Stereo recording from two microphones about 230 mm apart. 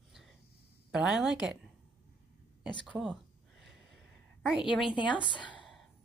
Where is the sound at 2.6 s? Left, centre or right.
Centre.